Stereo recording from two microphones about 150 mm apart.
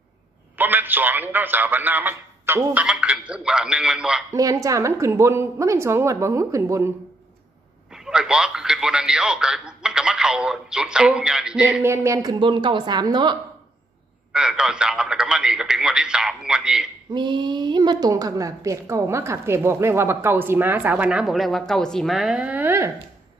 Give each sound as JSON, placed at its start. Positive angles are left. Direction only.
{"t": 0.6, "sound": "a woman's voice", "side_deg": -10}
{"t": 4.3, "sound": "a woman's voice", "side_deg": -20}
{"t": 7.9, "sound": "a man's voice", "side_deg": -5}
{"t": 11.8, "sound": "a woman's voice", "side_deg": -15}
{"t": 14.3, "sound": "speech", "side_deg": -5}
{"t": 17.1, "sound": "a woman's voice", "side_deg": -30}